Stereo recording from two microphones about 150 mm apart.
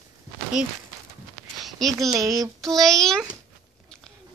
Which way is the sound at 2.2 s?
20° right (ahead or behind).